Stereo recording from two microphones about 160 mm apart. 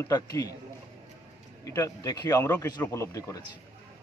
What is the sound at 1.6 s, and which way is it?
Speech, 20° left (ahead or behind).